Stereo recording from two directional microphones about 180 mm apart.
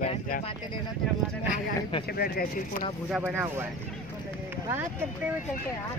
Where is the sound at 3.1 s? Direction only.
10° right (ahead or behind).